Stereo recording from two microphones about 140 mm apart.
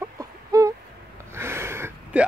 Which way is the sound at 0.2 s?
25° right (ahead or behind).